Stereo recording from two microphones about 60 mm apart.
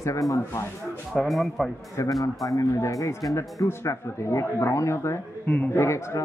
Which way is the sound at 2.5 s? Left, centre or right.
Left.